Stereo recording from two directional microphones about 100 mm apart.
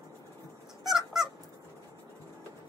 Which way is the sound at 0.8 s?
5° right (ahead or behind).